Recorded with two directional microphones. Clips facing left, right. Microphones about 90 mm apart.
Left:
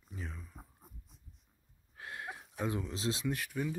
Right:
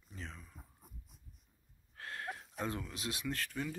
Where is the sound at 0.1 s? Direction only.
10° left (ahead or behind).